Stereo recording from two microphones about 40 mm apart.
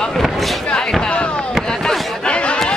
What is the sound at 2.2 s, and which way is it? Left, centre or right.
Chatter, left.